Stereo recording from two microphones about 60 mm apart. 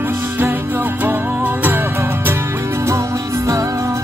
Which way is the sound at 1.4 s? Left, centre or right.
Right.